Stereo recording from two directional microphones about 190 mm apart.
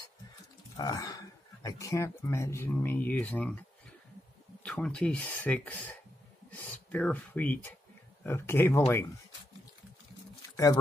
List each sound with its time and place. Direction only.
0.7 s speech: 20° left (ahead or behind)
4.6 s speech: 5° left (ahead or behind)
10.5 s a sound: 15° left (ahead or behind)